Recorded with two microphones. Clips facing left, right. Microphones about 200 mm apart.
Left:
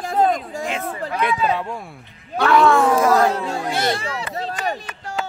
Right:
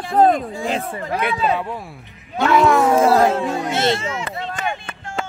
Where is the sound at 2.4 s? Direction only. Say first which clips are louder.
Even; 20° right (ahead or behind).